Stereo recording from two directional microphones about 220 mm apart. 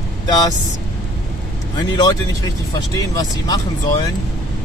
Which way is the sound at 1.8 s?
15° left (ahead or behind).